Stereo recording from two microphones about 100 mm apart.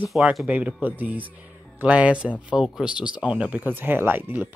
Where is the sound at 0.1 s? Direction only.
5° right (ahead or behind).